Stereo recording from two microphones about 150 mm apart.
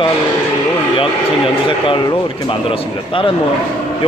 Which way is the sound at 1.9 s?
30° left (ahead or behind).